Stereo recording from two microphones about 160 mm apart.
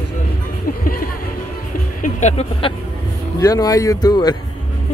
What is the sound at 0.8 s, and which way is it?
Speech, 65° left (ahead or behind).